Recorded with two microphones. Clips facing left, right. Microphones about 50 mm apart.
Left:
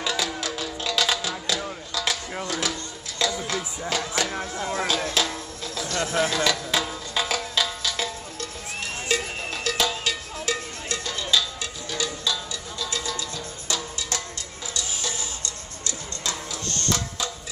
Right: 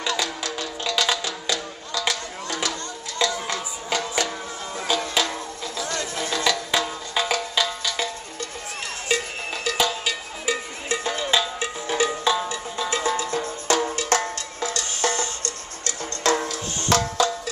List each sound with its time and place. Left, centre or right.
0.0 s music: centre
9.1 s cowbell: centre
10.9 s music: right
15.4 s music: right
16.6 s music: centre